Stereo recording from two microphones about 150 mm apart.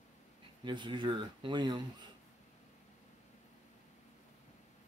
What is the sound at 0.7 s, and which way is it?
Speech, 30° right (ahead or behind).